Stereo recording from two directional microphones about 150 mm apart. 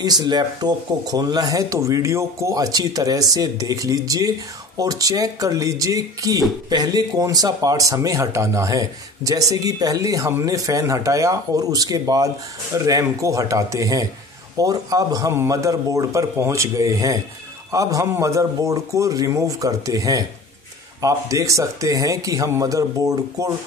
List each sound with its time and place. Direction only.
0.0 s speech: 30° right (ahead or behind)